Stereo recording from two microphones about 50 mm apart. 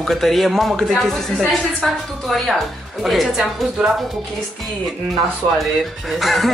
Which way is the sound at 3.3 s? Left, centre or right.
Centre.